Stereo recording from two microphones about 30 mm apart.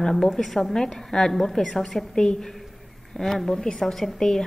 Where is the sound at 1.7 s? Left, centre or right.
Centre.